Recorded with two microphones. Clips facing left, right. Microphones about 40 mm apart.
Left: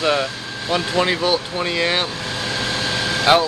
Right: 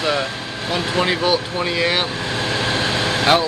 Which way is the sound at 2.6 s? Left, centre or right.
Right.